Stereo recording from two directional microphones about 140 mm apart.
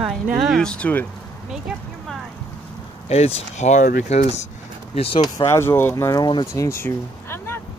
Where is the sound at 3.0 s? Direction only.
50° left (ahead or behind).